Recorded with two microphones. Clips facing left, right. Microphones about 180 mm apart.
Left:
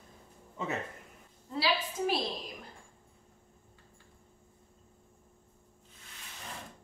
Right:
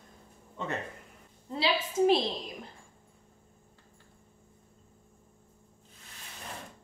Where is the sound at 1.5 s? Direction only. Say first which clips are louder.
Right 2 dB; 25° right (ahead or behind).